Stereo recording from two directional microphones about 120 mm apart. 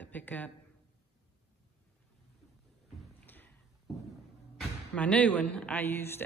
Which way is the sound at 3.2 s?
15° left (ahead or behind).